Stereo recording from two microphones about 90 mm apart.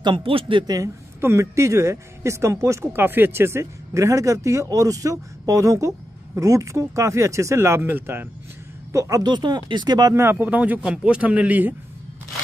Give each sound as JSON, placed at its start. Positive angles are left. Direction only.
{"t": 0.0, "sound": "speech", "side_deg": -70}
{"t": 1.2, "sound": "speech", "side_deg": -30}
{"t": 2.9, "sound": "speech", "side_deg": -25}
{"t": 8.9, "sound": "speech", "side_deg": -35}
{"t": 9.2, "sound": "speech", "side_deg": -55}
{"t": 10.4, "sound": "a man's voice", "side_deg": -20}